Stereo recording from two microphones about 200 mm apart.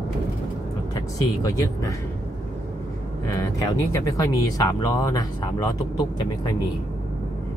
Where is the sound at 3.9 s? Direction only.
15° left (ahead or behind).